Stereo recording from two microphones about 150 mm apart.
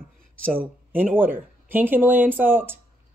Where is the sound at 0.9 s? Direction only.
10° right (ahead or behind).